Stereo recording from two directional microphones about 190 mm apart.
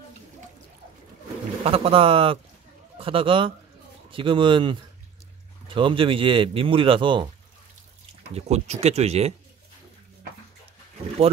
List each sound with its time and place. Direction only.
1.6 s speech: 30° right (ahead or behind)
8.4 s speech: 35° right (ahead or behind)